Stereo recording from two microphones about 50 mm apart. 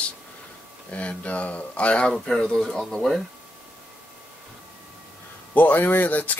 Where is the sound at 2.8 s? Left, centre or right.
Centre.